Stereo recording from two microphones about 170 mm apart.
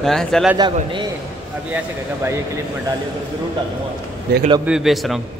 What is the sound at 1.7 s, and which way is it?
Speech, 15° right (ahead or behind).